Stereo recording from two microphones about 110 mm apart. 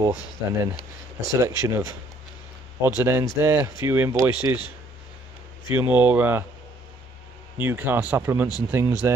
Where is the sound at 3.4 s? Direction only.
20° right (ahead or behind).